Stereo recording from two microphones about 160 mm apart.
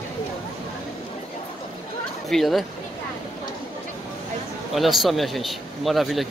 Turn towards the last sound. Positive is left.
turn(degrees=0)  # may be behind; listen again after turning